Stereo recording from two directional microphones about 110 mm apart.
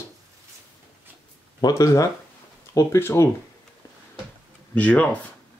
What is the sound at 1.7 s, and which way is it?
Speech, 30° left (ahead or behind).